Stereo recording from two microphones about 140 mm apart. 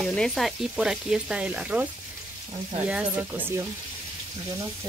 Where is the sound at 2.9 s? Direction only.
10° right (ahead or behind).